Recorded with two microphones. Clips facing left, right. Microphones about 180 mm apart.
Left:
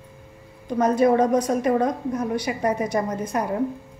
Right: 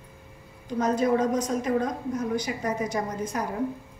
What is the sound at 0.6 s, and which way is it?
A woman's voice, 60° left (ahead or behind).